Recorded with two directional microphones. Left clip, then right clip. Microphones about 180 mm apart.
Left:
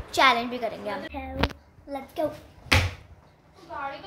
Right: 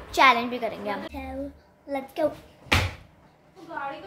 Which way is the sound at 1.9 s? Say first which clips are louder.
Right 3 dB; 15° right (ahead or behind).